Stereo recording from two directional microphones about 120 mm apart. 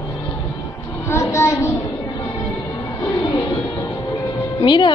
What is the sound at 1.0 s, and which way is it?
Child singing, 25° left (ahead or behind).